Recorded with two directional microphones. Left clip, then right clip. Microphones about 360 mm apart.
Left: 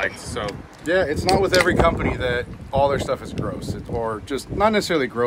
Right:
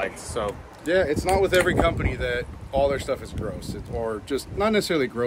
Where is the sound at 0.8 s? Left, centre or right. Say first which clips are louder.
Left 2 dB; centre.